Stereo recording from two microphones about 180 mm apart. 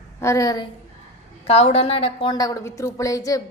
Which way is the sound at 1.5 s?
35° left (ahead or behind).